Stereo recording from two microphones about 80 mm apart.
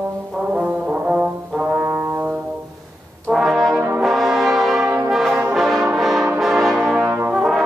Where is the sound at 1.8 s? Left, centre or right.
Right.